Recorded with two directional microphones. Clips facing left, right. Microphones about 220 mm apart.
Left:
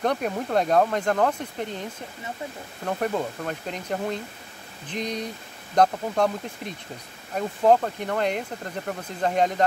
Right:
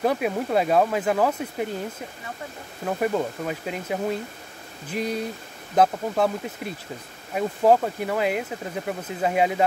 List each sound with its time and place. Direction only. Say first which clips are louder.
0.0 s speech: right 2 dB; 5° right (ahead or behind)